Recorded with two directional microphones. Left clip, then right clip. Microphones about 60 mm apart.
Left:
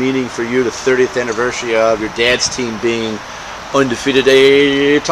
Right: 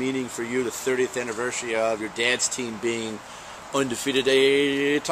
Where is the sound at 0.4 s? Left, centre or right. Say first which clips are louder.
Left 11 dB; right.